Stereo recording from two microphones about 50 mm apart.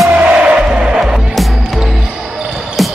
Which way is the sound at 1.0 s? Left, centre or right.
Centre.